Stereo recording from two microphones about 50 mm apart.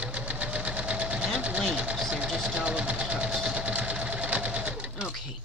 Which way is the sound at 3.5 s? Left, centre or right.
Right.